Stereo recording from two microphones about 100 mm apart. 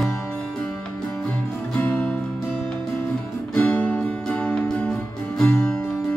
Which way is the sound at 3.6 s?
15° left (ahead or behind).